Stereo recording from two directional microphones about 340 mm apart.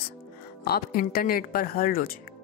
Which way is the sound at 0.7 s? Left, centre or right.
Left.